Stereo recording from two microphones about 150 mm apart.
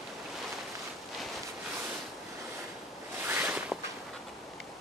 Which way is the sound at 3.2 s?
10° right (ahead or behind).